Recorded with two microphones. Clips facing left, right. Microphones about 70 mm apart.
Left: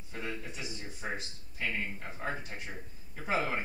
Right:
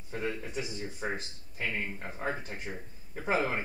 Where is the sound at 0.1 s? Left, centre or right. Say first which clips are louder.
Right 5 dB; right.